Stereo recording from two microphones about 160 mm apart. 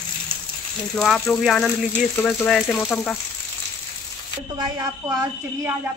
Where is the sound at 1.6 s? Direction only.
15° left (ahead or behind).